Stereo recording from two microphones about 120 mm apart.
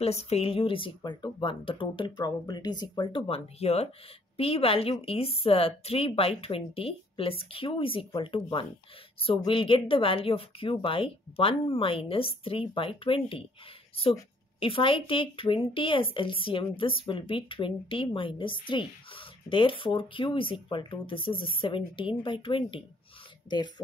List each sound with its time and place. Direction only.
0.0 s a woman's voice: 60° left (ahead or behind)
14.6 s a woman's voice: 50° left (ahead or behind)